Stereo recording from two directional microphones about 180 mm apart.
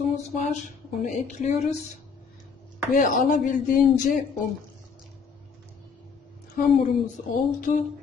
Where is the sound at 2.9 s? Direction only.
50° left (ahead or behind).